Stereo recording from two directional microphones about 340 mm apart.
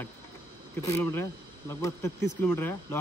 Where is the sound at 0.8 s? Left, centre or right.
Centre.